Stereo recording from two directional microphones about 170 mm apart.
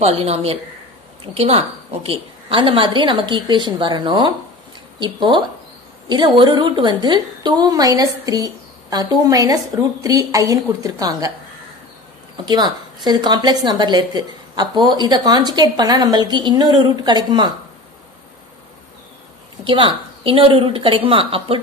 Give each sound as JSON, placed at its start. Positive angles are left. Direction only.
{"t": 0.0, "sound": "a woman's voice", "side_deg": -35}
{"t": 12.4, "sound": "a woman's voice", "side_deg": -25}
{"t": 19.6, "sound": "a woman's voice", "side_deg": -30}